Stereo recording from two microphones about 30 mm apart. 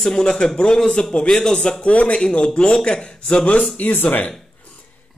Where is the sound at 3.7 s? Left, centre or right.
Left.